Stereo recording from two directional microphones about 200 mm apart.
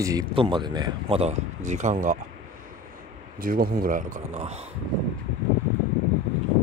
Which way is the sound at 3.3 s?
45° right (ahead or behind).